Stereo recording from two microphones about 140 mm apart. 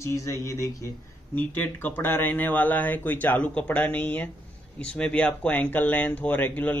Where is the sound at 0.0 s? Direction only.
20° left (ahead or behind).